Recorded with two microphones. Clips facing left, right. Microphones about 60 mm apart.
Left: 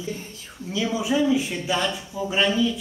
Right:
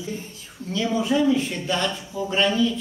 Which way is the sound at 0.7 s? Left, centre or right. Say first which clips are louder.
Right 1 dB; centre.